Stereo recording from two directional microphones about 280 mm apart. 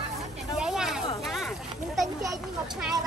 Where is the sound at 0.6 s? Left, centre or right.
Centre.